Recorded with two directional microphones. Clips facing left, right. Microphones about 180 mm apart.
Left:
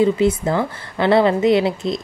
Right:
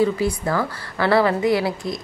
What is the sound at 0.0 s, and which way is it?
A woman's voice, 20° left (ahead or behind).